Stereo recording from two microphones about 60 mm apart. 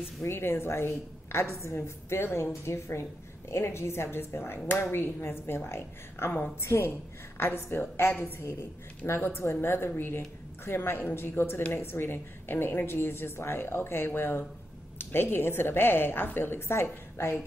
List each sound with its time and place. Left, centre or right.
0.2 s a woman's voice: left